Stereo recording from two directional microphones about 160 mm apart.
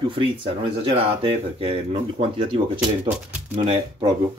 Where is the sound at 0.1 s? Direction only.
30° right (ahead or behind).